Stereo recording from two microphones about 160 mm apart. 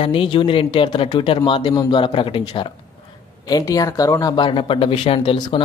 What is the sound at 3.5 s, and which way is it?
Speech, 20° left (ahead or behind).